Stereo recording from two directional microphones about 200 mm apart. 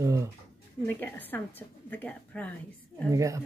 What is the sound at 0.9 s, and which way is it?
A woman's voice, 10° left (ahead or behind).